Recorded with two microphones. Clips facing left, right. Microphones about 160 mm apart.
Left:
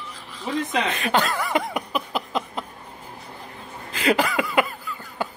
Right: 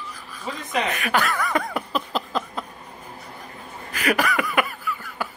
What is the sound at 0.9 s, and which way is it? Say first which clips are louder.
Snicker: left 1 dB; 25° left (ahead or behind).